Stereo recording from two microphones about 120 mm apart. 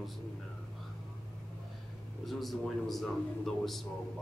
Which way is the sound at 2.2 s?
Centre (ahead or behind).